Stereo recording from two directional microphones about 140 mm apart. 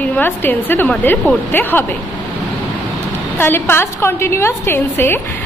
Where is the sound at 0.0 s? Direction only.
10° left (ahead or behind).